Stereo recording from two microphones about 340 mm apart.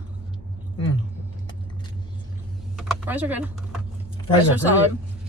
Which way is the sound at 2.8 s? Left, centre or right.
Centre.